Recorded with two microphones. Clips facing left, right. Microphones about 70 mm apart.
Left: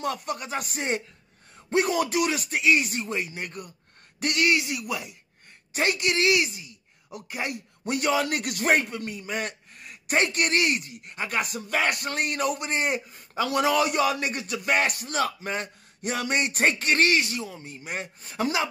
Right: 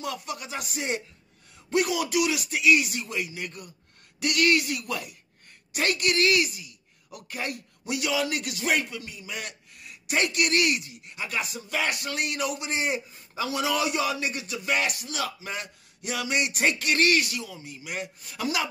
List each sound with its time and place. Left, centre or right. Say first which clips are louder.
0.0 s speech: left 4 dB; left
4.4 s a woman's voice: right 1 dB; left
7.8 s a man's voice: left 3 dB; left
17.6 s speech: left 1 dB; left